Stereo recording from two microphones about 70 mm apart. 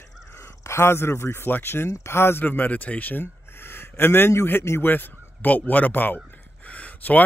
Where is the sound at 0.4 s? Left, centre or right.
Left.